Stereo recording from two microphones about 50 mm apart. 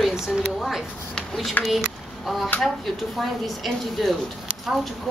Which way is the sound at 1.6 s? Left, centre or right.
Left.